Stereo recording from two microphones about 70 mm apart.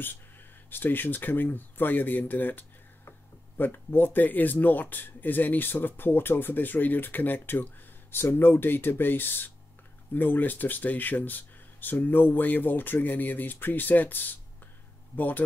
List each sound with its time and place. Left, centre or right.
0.7 s speech: left